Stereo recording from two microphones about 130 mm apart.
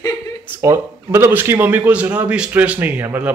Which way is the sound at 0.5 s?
20° right (ahead or behind).